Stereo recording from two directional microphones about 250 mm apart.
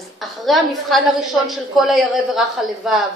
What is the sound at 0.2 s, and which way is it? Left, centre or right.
A woman's voice, centre.